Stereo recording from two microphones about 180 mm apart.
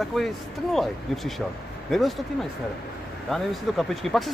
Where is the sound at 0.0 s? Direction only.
Centre (ahead or behind).